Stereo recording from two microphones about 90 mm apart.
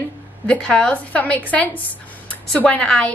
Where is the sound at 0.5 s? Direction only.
10° left (ahead or behind).